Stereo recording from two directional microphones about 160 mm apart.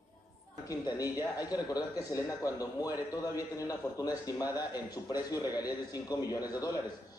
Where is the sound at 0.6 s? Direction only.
20° left (ahead or behind).